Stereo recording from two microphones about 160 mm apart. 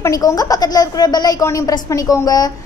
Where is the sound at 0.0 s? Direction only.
20° left (ahead or behind).